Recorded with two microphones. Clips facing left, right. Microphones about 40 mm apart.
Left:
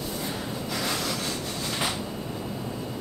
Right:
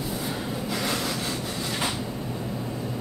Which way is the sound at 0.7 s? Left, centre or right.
Centre.